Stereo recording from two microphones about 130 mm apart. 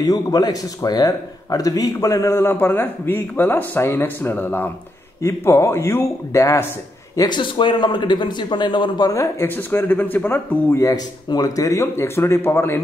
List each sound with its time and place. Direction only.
0.0 s speech: 30° left (ahead or behind)
7.2 s speech: 35° left (ahead or behind); by 12.8 s 20° left (ahead or behind)